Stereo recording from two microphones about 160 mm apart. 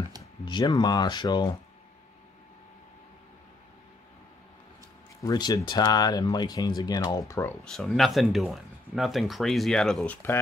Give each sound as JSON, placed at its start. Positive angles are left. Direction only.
{"t": 0.2, "sound": "speech", "side_deg": 25}
{"t": 5.2, "sound": "speech", "side_deg": 25}
{"t": 7.6, "sound": "speech", "side_deg": 5}